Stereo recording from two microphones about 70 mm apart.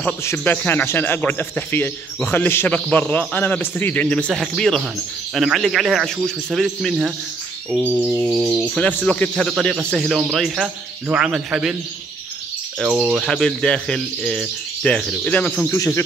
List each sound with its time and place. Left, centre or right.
0.4 s a man's voice: left
4.3 s a man's voice: centre
7.8 s speech: centre
8.7 s a man's voice: centre
12.8 s speech: centre
13.2 s speech: centre
15.2 s a man's voice: centre
15.7 s speech: left